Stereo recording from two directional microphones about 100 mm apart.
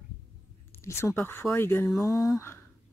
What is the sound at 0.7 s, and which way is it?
Speech, 25° left (ahead or behind).